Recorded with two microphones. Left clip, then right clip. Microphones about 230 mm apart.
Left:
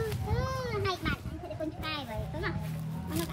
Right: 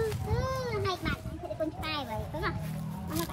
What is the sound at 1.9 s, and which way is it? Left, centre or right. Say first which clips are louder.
Children playing: right 2 dB; centre.